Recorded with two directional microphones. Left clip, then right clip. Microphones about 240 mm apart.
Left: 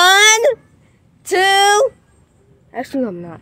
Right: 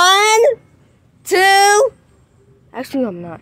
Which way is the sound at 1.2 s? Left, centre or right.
Centre.